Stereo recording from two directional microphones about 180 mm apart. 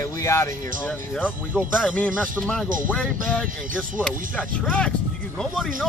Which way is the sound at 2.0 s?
5° left (ahead or behind).